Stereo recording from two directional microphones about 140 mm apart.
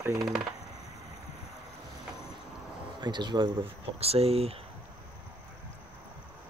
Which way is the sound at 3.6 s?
45° right (ahead or behind).